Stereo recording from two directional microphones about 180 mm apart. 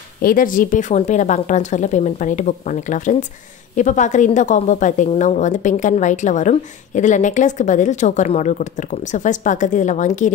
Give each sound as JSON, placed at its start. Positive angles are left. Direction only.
{"t": 0.2, "sound": "a woman's voice", "side_deg": 50}